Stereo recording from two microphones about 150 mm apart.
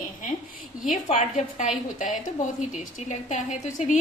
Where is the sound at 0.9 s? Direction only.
60° left (ahead or behind).